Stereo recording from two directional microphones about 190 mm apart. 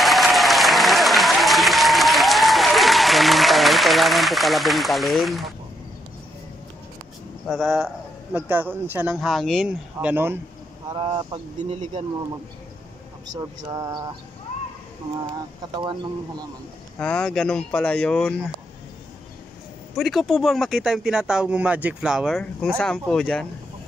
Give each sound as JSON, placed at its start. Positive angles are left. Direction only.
{"t": 0.0, "sound": "applause", "side_deg": 0}
{"t": 7.4, "sound": "a man's voice", "side_deg": 0}
{"t": 10.9, "sound": "speech", "side_deg": -30}
{"t": 13.3, "sound": "speech", "side_deg": -20}
{"t": 17.0, "sound": "a man's voice", "side_deg": 5}
{"t": 20.0, "sound": "a man's voice", "side_deg": 0}